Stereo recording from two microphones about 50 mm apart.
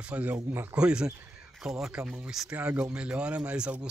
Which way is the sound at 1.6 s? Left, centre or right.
Centre.